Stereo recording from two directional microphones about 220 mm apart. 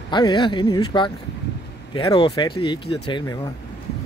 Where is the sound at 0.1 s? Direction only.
20° left (ahead or behind).